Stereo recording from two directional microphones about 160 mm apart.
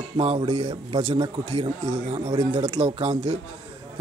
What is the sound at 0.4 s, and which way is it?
A man's voice, 30° right (ahead or behind).